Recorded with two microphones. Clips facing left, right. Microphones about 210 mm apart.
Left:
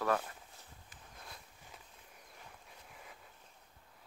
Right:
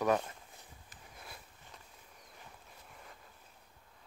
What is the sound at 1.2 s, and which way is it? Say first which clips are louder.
Walk: right 1 dB; 5° right (ahead or behind).